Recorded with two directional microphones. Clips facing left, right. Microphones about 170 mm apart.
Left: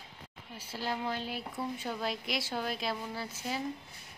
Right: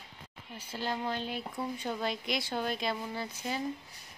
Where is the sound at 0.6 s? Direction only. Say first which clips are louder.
Right 1 dB; 10° left (ahead or behind).